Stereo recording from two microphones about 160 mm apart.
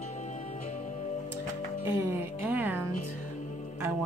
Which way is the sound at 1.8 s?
15° right (ahead or behind).